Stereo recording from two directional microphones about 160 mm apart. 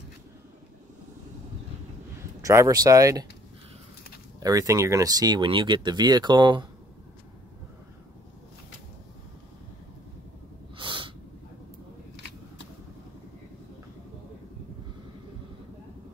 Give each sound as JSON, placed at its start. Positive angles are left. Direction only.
{"t": 2.4, "sound": "speech", "side_deg": -20}
{"t": 4.4, "sound": "speech", "side_deg": -20}
{"t": 10.8, "sound": "snort", "side_deg": -30}